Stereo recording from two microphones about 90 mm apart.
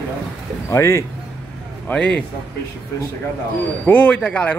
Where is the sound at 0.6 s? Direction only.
30° left (ahead or behind).